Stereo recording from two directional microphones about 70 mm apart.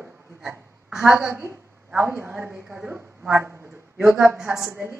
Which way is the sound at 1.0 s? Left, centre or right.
Right.